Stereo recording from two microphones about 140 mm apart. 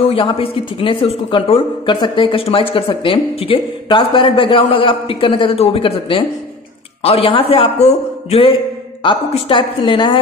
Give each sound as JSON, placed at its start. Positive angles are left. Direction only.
{"t": 0.0, "sound": "a man's voice", "side_deg": 40}